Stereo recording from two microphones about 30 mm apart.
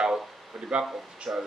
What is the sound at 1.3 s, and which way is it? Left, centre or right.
Speech, right.